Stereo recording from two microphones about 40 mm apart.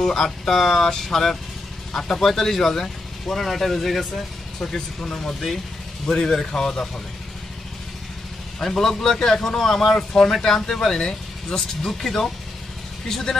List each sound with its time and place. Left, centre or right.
0.0 s speech: centre
4.7 s speech: left
5.2 s speech: centre
6.0 s speech: centre
8.5 s speech: centre